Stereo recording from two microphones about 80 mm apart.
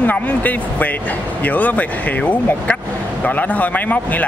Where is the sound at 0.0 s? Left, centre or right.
Centre.